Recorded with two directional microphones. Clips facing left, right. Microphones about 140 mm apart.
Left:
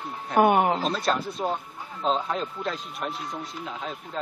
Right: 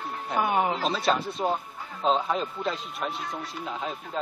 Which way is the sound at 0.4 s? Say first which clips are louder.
Left 6 dB; 55° left (ahead or behind).